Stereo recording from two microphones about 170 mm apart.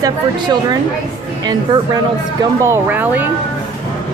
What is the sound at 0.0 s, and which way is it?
Speech, 25° right (ahead or behind).